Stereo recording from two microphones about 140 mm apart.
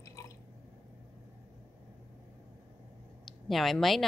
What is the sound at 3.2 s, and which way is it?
Speech, centre (ahead or behind).